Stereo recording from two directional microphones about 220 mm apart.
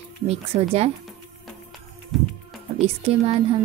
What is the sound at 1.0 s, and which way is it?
Music, centre (ahead or behind).